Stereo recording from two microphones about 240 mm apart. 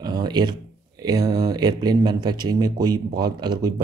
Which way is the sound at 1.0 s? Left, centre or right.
Centre.